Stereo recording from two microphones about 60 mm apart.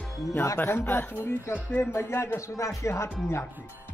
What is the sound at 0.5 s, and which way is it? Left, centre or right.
Speech, left.